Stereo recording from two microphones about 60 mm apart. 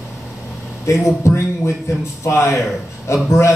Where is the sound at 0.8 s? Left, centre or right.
Left.